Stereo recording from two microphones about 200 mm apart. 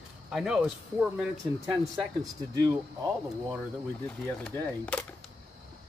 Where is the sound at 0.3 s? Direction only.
Centre (ahead or behind).